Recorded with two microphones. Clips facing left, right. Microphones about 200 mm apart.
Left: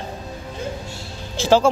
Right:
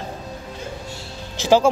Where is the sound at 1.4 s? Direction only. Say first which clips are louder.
Even; 15° right (ahead or behind).